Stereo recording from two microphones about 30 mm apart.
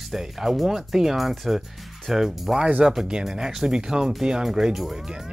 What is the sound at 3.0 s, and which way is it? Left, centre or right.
Speech, right.